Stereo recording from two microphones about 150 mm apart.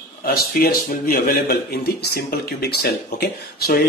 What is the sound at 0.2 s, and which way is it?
A man's voice, 85° left.